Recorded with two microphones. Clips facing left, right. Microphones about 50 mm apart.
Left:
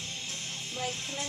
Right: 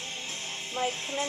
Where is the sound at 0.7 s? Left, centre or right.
Right.